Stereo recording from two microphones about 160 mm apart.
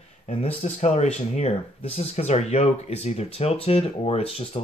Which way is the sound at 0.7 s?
45° left (ahead or behind).